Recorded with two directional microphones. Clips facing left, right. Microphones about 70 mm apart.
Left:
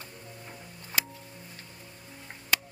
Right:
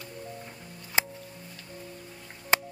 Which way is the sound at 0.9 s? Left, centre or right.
Left.